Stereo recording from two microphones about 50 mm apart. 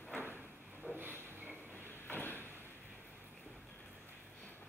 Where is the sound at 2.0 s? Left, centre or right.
Left.